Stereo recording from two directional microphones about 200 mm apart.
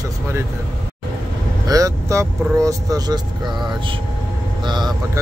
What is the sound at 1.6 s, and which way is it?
Speech, 15° right (ahead or behind).